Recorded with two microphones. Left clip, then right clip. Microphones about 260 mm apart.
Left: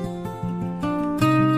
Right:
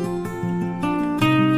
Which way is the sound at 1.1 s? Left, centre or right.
Left.